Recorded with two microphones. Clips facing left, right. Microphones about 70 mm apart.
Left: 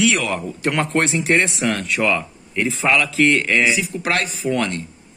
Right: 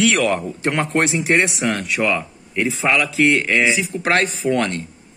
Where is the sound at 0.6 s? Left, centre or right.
Right.